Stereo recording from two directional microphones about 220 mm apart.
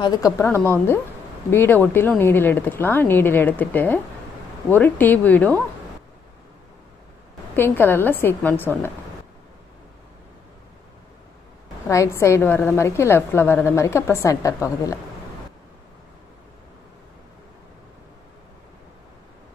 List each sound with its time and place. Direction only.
0.0 s a woman's voice: 15° left (ahead or behind)
7.5 s a woman's voice: 10° left (ahead or behind)
11.9 s a woman's voice: 15° left (ahead or behind)